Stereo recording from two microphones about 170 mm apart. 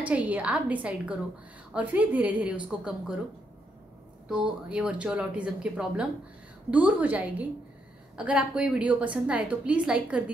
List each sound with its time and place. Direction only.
0.0 s a woman's voice: 10° right (ahead or behind)
4.3 s a woman's voice: 5° right (ahead or behind)